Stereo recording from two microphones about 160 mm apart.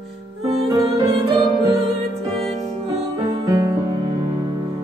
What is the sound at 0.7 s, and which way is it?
Music, 35° right (ahead or behind).